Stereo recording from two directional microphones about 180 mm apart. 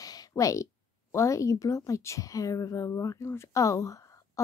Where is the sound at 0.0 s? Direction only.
20° left (ahead or behind).